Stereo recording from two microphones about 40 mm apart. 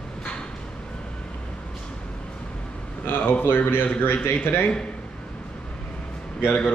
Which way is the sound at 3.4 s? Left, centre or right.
Left.